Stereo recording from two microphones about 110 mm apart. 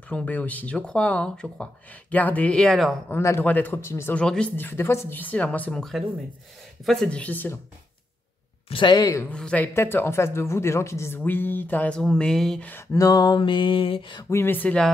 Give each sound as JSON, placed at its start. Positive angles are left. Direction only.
{"t": 0.1, "sound": "speech", "side_deg": 15}
{"t": 3.2, "sound": "speech", "side_deg": 25}
{"t": 4.1, "sound": "speech", "side_deg": 10}
{"t": 8.6, "sound": "speech", "side_deg": 45}
{"t": 9.3, "sound": "speech", "side_deg": 10}
{"t": 9.8, "sound": "speech", "side_deg": 20}
{"t": 12.9, "sound": "a sound", "side_deg": 35}
{"t": 14.3, "sound": "speech", "side_deg": 20}